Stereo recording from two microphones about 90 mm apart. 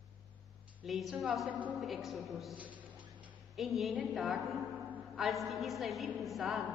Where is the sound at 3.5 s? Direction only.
Centre (ahead or behind).